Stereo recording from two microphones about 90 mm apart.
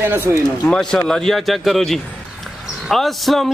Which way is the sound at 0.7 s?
10° left (ahead or behind).